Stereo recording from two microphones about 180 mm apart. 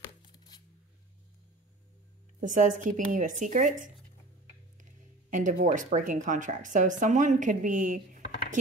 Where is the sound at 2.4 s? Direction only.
45° right (ahead or behind).